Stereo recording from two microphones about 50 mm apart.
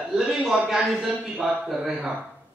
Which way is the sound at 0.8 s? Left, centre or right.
Centre.